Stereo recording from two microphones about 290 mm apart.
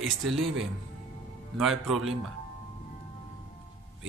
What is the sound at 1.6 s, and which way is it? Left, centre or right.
Speech, centre.